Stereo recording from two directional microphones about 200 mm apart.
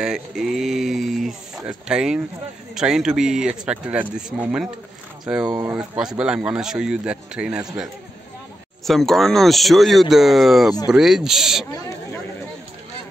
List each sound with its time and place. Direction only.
0.0 s a sound: centre (ahead or behind)
1.7 s speech: 5° right (ahead or behind)
5.8 s speech: 5° right (ahead or behind)